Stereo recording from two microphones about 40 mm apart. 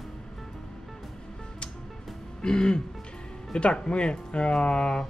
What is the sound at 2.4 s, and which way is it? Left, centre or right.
Speech, left.